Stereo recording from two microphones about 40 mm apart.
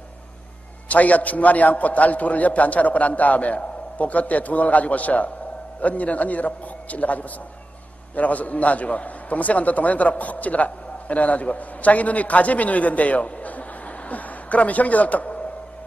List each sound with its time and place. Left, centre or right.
0.8 s a man's voice: left